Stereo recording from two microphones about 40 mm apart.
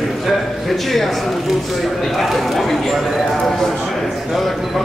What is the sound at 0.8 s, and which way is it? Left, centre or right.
Speech, centre.